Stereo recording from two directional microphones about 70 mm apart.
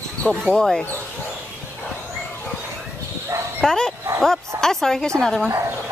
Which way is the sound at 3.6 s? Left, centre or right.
Centre.